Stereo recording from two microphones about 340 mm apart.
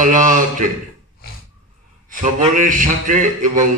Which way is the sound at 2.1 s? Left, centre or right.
Right.